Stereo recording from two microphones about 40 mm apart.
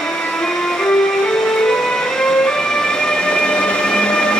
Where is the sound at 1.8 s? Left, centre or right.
Centre.